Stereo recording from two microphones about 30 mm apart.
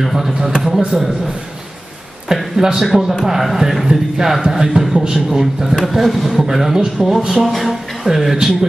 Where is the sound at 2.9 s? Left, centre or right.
Centre.